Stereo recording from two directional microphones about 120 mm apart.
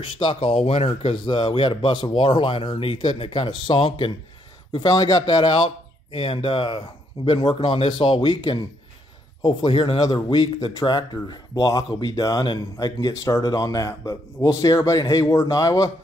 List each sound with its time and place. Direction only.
0.0 s speech: 40° left (ahead or behind)